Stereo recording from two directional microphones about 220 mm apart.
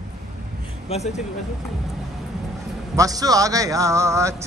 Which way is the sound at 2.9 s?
15° right (ahead or behind).